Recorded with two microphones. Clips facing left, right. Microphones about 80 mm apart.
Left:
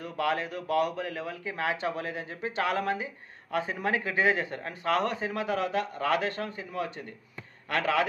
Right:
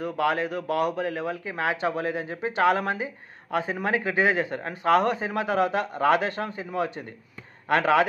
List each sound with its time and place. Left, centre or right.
0.2 s speech: right